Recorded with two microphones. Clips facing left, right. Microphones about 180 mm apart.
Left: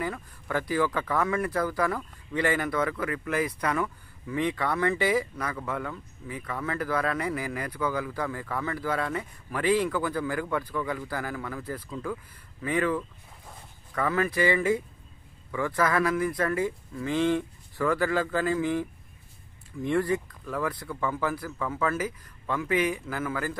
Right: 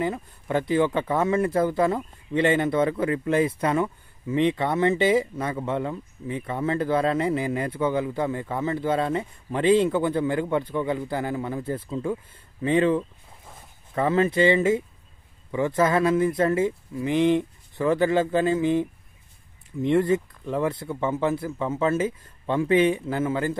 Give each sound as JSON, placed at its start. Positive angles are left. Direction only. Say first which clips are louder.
{"t": 0.0, "sound": "speech", "louder": "right 6 dB", "side_deg": -25}